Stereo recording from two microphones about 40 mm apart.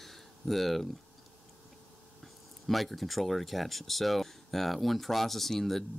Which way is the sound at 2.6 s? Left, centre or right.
Centre.